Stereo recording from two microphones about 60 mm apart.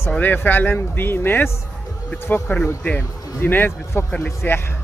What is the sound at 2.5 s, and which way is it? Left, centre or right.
Speech, left.